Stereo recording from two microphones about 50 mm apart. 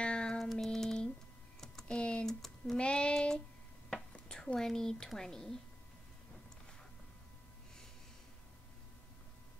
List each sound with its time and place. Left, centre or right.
0.0 s music: centre
0.4 s music: centre
0.7 s a sound: centre
1.9 s typing: left
2.2 s typing: centre
2.7 s child singing: left
4.3 s a sound: centre
5.1 s a woman's voice: centre